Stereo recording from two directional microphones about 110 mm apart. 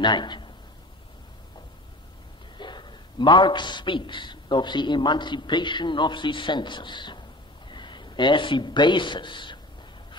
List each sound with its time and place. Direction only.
0.0 s speech: 45° left (ahead or behind)
2.5 s a man's voice: 45° left (ahead or behind)